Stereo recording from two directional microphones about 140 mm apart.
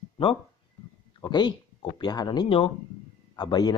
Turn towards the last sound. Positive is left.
turn(degrees=30)  # may be behind; listen again after turning